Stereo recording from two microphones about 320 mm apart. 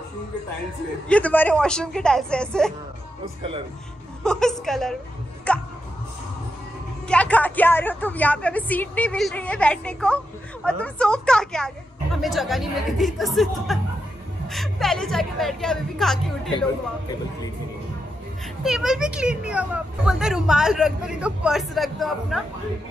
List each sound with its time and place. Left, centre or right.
1.0 s a woman's voice: centre
4.2 s a woman's voice: centre
7.1 s a woman's voice: centre
18.6 s a woman's voice: centre